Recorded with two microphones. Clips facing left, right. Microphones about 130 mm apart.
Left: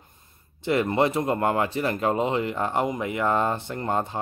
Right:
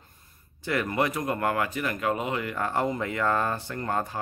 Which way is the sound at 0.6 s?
25° left (ahead or behind).